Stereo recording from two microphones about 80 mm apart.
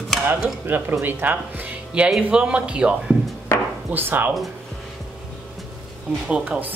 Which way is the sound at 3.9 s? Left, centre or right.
Right.